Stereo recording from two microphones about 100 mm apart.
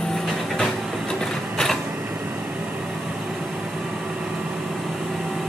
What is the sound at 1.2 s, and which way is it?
Printer, 5° left (ahead or behind).